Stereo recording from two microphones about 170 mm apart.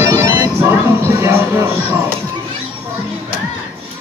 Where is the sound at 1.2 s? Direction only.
15° right (ahead or behind).